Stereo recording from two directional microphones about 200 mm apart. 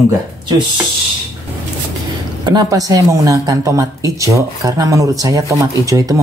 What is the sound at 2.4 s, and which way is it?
A woman's voice, 20° right (ahead or behind).